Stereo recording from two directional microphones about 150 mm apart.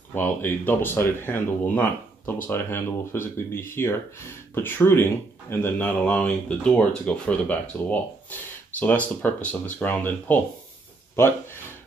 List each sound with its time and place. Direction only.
0.1 s speech: 15° left (ahead or behind)